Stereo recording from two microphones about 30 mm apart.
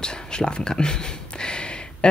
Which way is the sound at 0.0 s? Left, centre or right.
Left.